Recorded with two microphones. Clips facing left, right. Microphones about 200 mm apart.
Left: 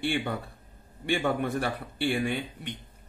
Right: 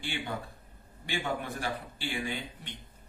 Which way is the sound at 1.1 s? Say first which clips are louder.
Left 7 dB; 60° left (ahead or behind).